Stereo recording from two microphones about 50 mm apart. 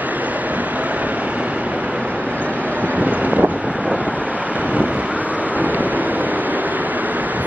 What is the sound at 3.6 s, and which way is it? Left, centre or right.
Wind noise, centre.